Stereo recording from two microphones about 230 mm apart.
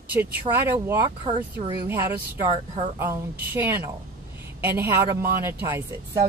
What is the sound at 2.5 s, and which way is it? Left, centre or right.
Speech, right.